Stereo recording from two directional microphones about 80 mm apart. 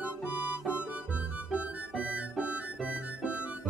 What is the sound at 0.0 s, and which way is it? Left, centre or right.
Harmonica, centre.